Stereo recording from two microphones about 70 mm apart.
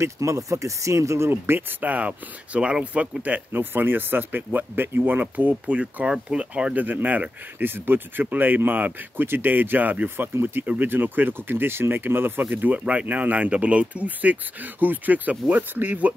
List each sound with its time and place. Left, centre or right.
0.0 s speech: right